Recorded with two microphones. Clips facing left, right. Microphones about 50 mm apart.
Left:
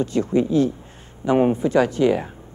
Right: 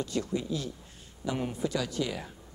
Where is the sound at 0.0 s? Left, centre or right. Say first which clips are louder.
Left 12 dB; left.